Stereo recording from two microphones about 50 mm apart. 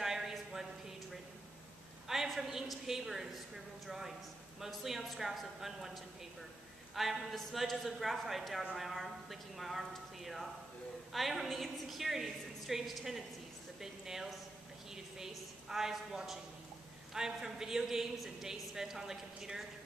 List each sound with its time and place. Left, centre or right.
0.0 s a sound: centre
2.0 s a man's voice: centre
4.6 s a woman's voice: centre
7.0 s a woman's voice: centre